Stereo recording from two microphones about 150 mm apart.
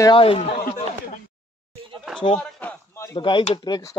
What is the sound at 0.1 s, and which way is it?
Speech, 35° left (ahead or behind).